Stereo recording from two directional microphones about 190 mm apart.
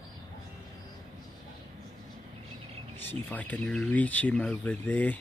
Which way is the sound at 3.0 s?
10° left (ahead or behind).